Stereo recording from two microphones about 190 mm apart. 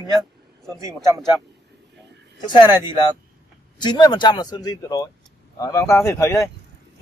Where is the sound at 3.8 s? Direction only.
25° left (ahead or behind).